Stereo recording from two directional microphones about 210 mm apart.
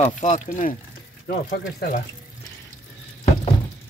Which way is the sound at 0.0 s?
35° left (ahead or behind).